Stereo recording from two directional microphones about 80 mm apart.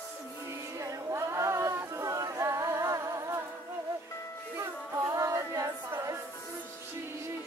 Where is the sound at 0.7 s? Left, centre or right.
Right.